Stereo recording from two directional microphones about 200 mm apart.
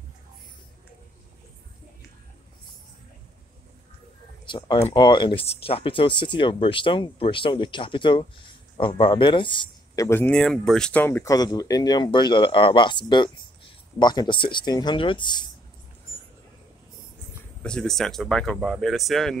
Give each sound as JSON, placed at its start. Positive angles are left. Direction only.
{"t": 4.5, "sound": "speech", "side_deg": 20}
{"t": 17.6, "sound": "speech", "side_deg": 5}